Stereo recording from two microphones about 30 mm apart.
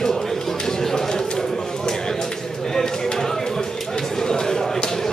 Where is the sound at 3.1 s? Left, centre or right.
Centre.